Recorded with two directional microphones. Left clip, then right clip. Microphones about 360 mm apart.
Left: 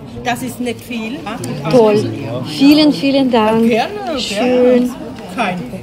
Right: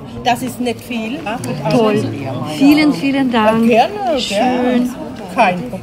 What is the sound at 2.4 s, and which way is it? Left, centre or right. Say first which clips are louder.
Speech: left 1 dB; right.